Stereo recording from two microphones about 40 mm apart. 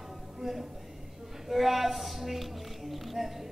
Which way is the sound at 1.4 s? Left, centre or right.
Centre.